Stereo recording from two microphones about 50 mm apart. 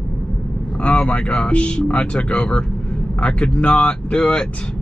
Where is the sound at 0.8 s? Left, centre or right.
Left.